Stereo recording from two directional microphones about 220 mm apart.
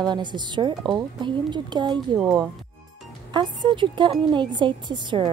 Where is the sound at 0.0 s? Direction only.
20° right (ahead or behind).